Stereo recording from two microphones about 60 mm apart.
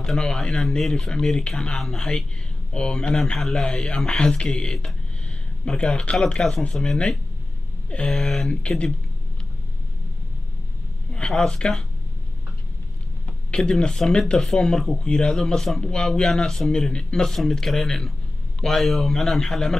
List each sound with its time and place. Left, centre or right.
0.0 s a man's voice: centre
8.5 s speech: centre
11.1 s speech: centre
13.6 s a man's voice: centre